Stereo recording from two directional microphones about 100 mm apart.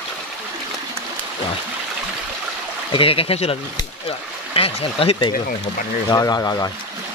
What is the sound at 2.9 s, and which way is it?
Speech, 65° left (ahead or behind).